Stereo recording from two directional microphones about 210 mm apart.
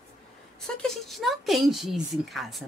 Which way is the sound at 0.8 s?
Centre (ahead or behind).